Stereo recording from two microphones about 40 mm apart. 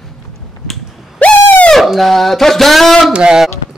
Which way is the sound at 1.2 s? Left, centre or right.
Left.